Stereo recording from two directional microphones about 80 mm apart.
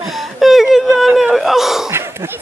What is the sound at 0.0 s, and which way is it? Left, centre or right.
Whimper, centre.